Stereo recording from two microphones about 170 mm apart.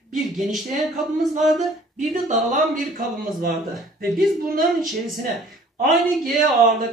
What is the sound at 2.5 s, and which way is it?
A man's voice, 55° right (ahead or behind).